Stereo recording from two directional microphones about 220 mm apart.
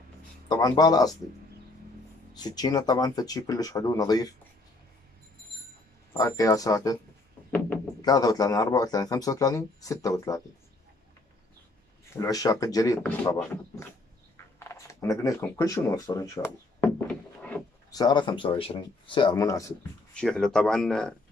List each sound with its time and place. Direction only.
0.5 s speech: 15° left (ahead or behind)
2.3 s speech: 20° left (ahead or behind)
6.1 s speech: 15° left (ahead or behind)
8.0 s speech: 15° left (ahead or behind)
12.2 s speech: 15° left (ahead or behind)
14.3 s a sound: 15° left (ahead or behind)
17.9 s speech: 20° left (ahead or behind)
20.2 s speech: 5° left (ahead or behind)